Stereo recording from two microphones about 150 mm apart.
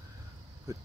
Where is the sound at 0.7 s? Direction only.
20° right (ahead or behind).